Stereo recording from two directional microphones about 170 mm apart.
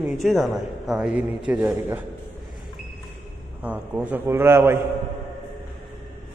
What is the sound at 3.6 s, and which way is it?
A man's voice, 10° right (ahead or behind).